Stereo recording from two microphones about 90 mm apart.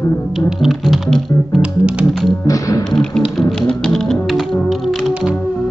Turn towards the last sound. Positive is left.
turn(degrees=5)  # may be behind; listen again after turning